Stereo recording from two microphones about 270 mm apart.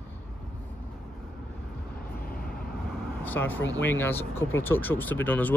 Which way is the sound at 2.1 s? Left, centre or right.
Left.